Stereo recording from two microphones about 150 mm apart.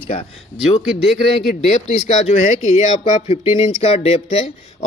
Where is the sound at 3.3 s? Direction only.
40° left (ahead or behind).